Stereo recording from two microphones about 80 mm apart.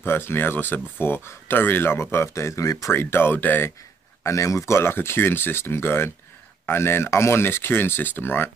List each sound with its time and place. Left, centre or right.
0.0 s speech: left
2.9 s speech: left
4.2 s speech: left